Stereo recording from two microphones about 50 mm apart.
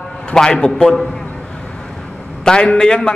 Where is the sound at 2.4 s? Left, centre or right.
Centre.